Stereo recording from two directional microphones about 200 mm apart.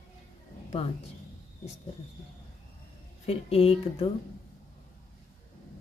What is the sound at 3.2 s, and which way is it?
Speech, 30° left (ahead or behind).